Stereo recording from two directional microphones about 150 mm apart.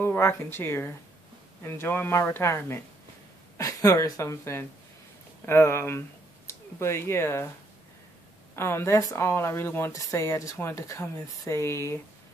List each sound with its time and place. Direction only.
0.0 s speech: 15° left (ahead or behind)
8.5 s speech: 15° left (ahead or behind)